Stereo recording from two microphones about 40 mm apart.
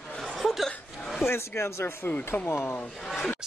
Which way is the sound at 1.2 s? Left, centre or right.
Left.